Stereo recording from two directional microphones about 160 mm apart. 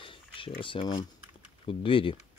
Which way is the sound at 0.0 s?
35° left (ahead or behind).